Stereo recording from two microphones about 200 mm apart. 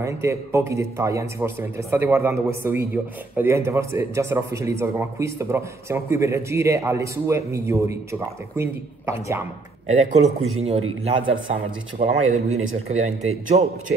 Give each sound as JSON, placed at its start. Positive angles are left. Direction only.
{"t": 0.0, "sound": "speech", "side_deg": -15}
{"t": 9.8, "sound": "speech", "side_deg": -30}
{"t": 12.0, "sound": "speech", "side_deg": -35}